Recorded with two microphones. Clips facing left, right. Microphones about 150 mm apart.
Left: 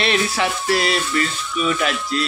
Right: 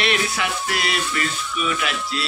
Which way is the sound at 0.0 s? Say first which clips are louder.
Left 3 dB; 35° left (ahead or behind).